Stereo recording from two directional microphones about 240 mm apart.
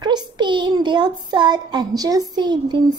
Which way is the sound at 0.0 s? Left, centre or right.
Centre.